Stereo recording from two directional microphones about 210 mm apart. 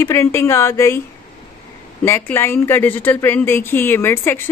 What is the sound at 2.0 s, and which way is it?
A woman's voice, 10° left (ahead or behind).